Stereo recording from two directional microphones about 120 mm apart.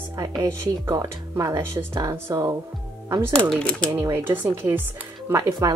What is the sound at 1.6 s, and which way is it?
Speech, 20° right (ahead or behind).